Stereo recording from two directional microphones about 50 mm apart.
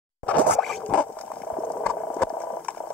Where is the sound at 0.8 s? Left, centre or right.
Left.